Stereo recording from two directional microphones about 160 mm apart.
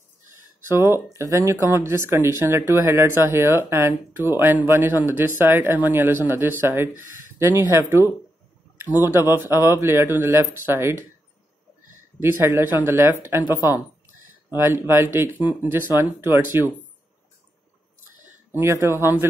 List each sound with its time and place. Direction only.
0.7 s speech: 15° right (ahead or behind)
6.9 s speech: 55° left (ahead or behind)
7.3 s speech: 15° right (ahead or behind)
12.2 s speech: 15° right (ahead or behind)
14.6 s speech: 15° right (ahead or behind)
18.5 s speech: 15° right (ahead or behind)